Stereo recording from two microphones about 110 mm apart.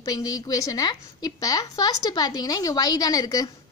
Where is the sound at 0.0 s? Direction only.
35° left (ahead or behind).